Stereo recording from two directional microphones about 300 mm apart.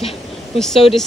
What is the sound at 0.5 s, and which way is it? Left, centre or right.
Speech, centre.